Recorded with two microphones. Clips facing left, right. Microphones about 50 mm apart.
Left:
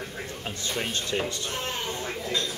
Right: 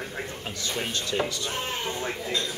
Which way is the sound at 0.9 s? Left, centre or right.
Left.